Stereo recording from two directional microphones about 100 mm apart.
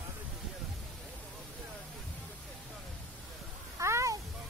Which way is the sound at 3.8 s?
30° right (ahead or behind).